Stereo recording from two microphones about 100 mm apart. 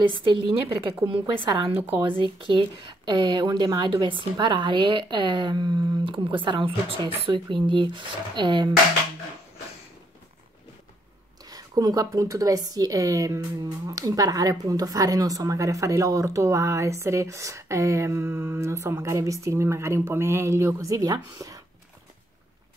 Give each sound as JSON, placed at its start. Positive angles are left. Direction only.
{"t": 0.2, "sound": "speech", "side_deg": -55}
{"t": 1.2, "sound": "a woman's voice", "side_deg": -45}
{"t": 1.8, "sound": "speech", "side_deg": -20}
{"t": 2.0, "sound": "a woman's voice", "side_deg": -55}
{"t": 11.4, "sound": "a woman's voice", "side_deg": -40}